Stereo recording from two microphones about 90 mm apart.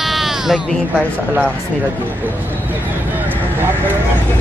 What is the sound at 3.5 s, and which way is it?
Speech, 25° right (ahead or behind).